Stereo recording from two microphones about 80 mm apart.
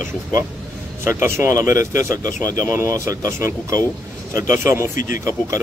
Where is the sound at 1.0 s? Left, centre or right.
Right.